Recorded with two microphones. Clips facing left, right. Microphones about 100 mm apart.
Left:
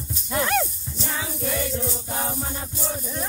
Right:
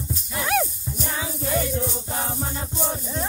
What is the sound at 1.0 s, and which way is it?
Music, 20° right (ahead or behind).